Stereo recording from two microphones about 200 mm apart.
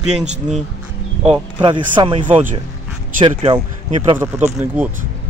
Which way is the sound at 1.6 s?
25° right (ahead or behind).